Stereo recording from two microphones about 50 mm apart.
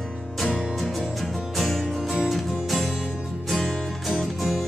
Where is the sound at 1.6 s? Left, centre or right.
Centre.